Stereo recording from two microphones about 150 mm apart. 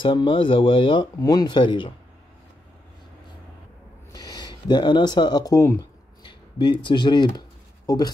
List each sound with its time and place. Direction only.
0.0 s speech: 35° left (ahead or behind)
4.1 s speech: 25° left (ahead or behind)
6.2 s a sound: 30° left (ahead or behind)